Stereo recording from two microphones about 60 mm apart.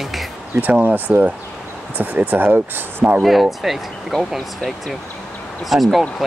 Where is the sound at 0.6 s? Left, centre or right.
Right.